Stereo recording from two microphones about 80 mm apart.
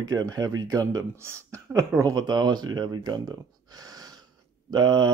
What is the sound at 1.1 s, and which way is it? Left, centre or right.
Speech, right.